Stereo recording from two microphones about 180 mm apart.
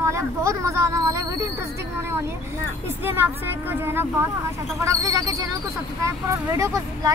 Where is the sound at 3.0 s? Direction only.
10° right (ahead or behind).